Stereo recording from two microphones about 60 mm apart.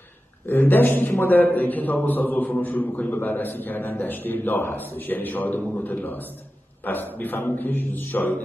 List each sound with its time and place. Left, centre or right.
0.5 s a man's voice: left